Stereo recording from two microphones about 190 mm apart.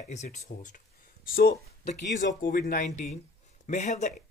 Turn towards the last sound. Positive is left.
turn(degrees=40)  # may be behind; listen again after turning